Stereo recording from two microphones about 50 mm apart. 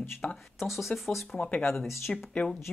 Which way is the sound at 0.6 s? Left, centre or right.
Centre.